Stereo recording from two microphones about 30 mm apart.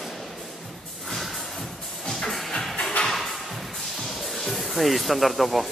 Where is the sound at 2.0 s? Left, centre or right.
Centre.